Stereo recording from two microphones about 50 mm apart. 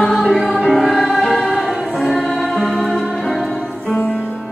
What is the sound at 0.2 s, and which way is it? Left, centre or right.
Music, centre.